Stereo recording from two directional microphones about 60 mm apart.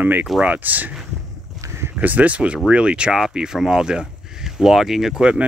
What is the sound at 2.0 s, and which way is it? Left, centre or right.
Speech, right.